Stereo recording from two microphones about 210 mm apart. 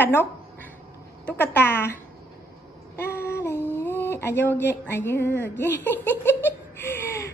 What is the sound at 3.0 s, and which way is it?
Child singing, 10° left (ahead or behind).